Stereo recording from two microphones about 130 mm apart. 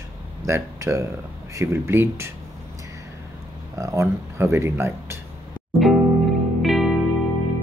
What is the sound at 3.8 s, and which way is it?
Speech, 25° right (ahead or behind).